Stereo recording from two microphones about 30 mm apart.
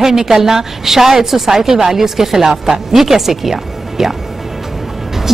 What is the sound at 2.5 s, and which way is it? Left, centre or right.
Speech, right.